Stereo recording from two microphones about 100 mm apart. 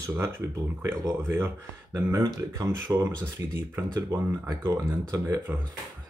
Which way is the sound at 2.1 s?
40° right (ahead or behind).